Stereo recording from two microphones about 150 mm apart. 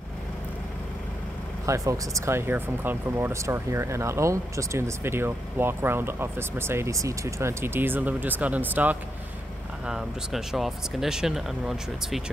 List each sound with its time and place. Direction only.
1.7 s speech: 20° right (ahead or behind); by 12.2 s 5° right (ahead or behind)